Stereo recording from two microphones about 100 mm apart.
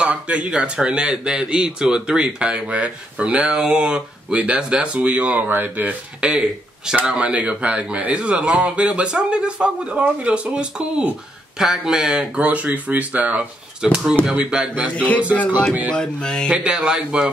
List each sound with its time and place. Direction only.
0.0 s speech: 10° right (ahead or behind)
15.0 s a sound: 15° left (ahead or behind)
16.5 s speech: 10° right (ahead or behind)